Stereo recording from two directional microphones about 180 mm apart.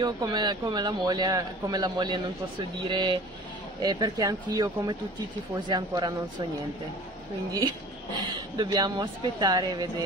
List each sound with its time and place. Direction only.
0.0 s a man's voice: 25° right (ahead or behind)
8.5 s a man's voice: 20° right (ahead or behind)